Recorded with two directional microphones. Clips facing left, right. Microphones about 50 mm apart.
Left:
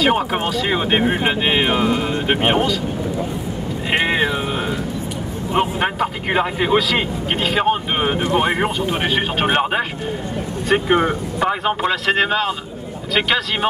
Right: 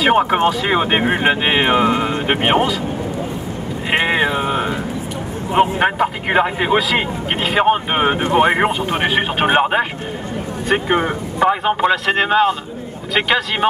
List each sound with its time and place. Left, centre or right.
0.0 s a man's voice: centre
3.9 s a man's voice: centre
5.5 s a man's voice: centre
8.0 s a man's voice: right
11.4 s a man's voice: centre